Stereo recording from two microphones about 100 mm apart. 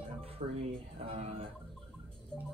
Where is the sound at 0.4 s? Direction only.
90° right.